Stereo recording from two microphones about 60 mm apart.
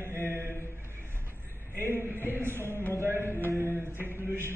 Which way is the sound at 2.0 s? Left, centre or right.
Right.